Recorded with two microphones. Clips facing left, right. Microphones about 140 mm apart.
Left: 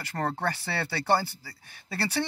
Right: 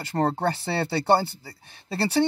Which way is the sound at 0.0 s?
25° right (ahead or behind).